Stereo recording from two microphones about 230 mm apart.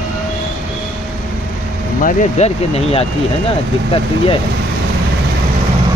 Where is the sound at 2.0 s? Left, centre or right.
Left.